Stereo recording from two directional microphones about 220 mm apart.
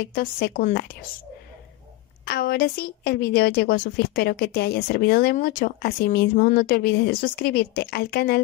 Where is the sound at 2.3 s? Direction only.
45° left (ahead or behind).